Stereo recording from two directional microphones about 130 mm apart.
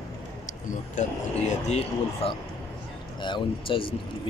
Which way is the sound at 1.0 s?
70° left (ahead or behind).